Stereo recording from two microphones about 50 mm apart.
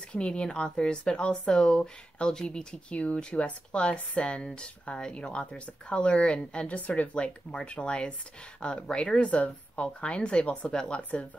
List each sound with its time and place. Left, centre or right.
0.1 s speech: left